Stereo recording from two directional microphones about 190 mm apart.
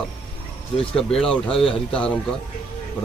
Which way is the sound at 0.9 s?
5° left (ahead or behind).